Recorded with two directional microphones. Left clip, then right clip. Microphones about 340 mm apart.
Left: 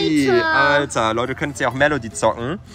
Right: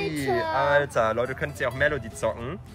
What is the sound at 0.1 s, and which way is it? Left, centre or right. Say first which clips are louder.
Speech: left 11 dB; centre.